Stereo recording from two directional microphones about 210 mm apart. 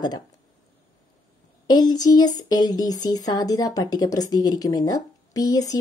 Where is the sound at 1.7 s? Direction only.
20° left (ahead or behind).